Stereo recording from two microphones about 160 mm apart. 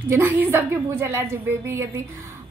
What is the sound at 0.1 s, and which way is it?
A woman's voice, 15° right (ahead or behind).